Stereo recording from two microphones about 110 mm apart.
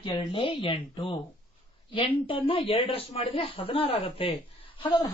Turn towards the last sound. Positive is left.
turn(degrees=45)  # may be behind; listen again after turning